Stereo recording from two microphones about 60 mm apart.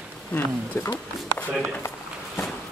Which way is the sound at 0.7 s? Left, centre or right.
Left.